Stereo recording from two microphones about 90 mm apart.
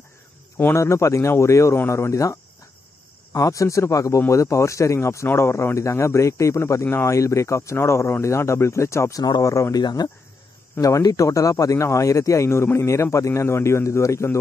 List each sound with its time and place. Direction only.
0.7 s speech: 35° left (ahead or behind)
3.3 s speech: 40° left (ahead or behind)
9.2 s speech: 45° left (ahead or behind)
9.8 s speech: 50° left (ahead or behind); by 14.4 s 35° left (ahead or behind)